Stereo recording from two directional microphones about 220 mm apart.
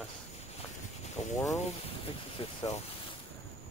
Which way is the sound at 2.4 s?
25° left (ahead or behind).